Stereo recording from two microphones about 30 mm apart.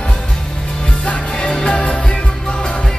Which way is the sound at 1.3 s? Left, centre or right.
Left.